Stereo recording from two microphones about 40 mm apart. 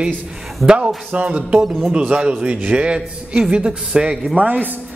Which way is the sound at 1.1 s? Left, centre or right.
Right.